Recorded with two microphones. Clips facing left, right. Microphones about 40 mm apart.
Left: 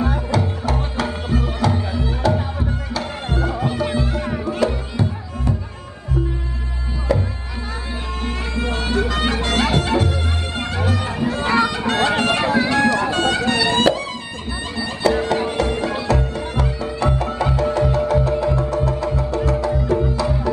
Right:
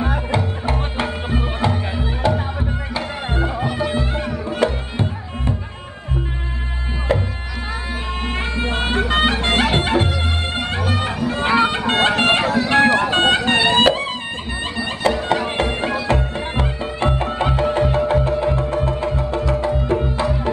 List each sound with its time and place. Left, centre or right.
0.0 s music: right
7.1 s music: right
8.3 s music: right
15.2 s music: right